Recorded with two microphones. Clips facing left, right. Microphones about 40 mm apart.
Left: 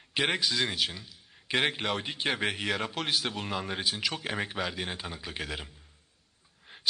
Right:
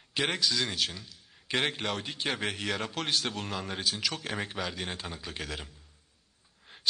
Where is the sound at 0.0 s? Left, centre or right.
Centre.